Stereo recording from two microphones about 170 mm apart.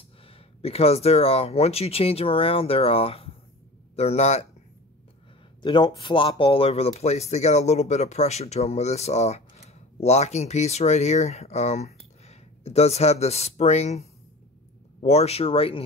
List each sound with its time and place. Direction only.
0.3 s speech: 35° left (ahead or behind)
5.6 s speech: 25° left (ahead or behind)